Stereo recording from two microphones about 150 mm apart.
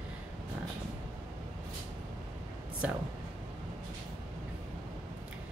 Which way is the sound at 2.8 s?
10° right (ahead or behind).